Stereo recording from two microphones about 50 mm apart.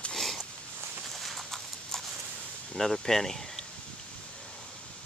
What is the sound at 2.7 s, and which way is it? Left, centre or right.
Speech, centre.